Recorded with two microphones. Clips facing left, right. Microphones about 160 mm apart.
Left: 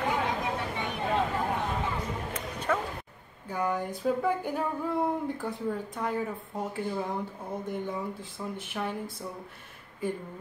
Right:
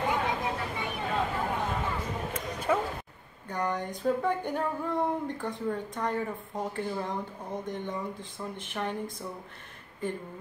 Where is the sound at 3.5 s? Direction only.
5° left (ahead or behind).